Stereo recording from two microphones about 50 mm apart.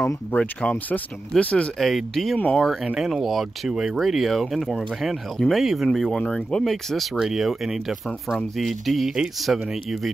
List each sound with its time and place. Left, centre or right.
0.4 s speech: left
1.8 s speech: centre
6.6 s speech: centre